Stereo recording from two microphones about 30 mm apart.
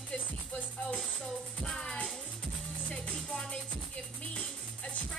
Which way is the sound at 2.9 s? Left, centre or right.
Left.